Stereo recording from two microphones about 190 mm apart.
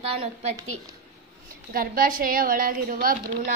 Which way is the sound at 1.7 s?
50° right (ahead or behind).